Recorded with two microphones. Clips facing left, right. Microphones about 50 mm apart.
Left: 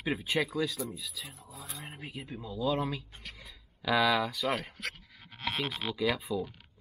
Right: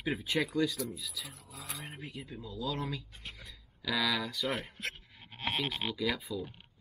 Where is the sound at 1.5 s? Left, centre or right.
Right.